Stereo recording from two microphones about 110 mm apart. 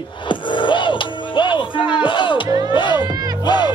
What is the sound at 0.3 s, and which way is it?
Music, 45° left (ahead or behind).